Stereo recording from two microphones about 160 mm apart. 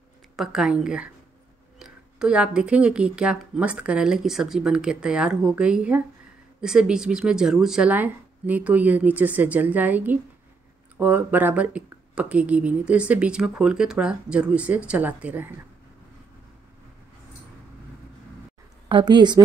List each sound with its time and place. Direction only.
0.4 s speech: 5° right (ahead or behind)
18.9 s a woman's voice: 30° right (ahead or behind)